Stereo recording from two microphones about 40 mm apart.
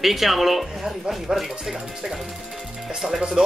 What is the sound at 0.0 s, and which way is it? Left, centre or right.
Speech, centre.